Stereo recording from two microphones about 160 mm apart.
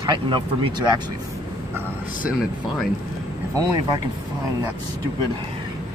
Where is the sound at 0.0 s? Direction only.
30° right (ahead or behind).